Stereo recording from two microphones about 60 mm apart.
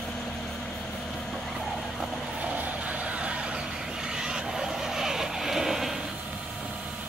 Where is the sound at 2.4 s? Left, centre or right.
Right; by 6.0 s centre.